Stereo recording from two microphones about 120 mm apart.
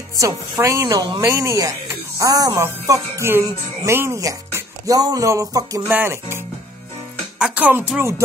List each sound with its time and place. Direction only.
0.2 s speech: 25° right (ahead or behind)
5.9 s speech: 20° right (ahead or behind)
7.3 s music: 10° right (ahead or behind)